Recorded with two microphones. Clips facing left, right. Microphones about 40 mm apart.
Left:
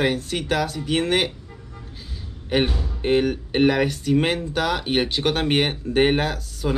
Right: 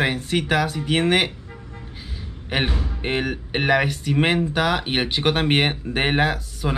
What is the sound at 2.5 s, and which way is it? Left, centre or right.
Speech, right.